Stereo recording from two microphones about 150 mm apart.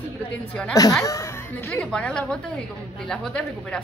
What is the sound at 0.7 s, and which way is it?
A woman's voice, 20° left (ahead or behind).